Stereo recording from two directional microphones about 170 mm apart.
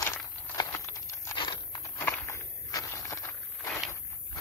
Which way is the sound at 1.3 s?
30° left (ahead or behind).